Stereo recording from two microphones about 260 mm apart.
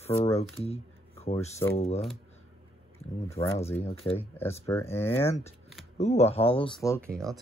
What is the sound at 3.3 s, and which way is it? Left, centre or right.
Speech, centre.